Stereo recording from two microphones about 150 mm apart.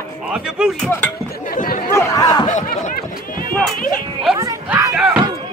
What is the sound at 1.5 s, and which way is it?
Chatter, 65° left (ahead or behind).